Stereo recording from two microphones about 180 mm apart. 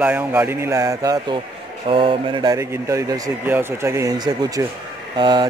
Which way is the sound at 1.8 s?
30° right (ahead or behind).